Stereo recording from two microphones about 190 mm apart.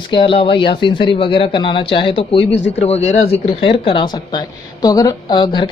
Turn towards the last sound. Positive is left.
turn(degrees=25)  # may be behind; listen again after turning